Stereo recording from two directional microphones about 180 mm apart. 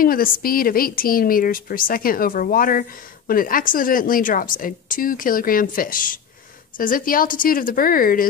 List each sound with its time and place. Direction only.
0.0 s a woman's voice: 55° left (ahead or behind)